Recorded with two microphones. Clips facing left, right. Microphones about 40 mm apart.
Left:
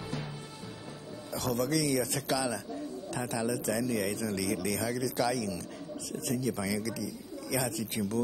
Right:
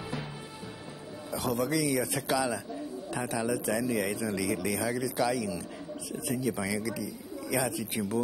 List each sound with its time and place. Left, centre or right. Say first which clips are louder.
1.3 s a man's voice: right 1 dB; centre